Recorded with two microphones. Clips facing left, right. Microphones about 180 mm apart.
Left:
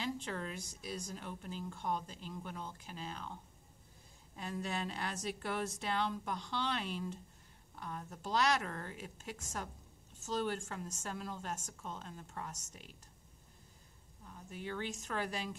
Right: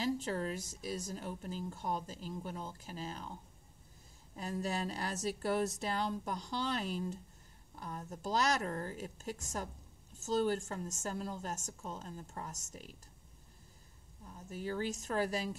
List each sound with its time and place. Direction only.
0.0 s speech: 40° right (ahead or behind)
4.4 s speech: 40° right (ahead or behind)
14.5 s speech: 40° right (ahead or behind)